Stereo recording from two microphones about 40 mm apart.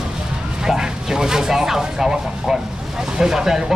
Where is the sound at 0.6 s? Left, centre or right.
Centre.